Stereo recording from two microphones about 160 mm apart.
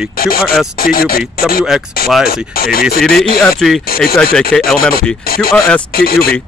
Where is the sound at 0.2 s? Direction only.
70° left (ahead or behind).